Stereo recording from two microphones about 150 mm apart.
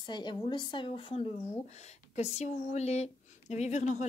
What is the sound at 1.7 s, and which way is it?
Speech, 45° left (ahead or behind).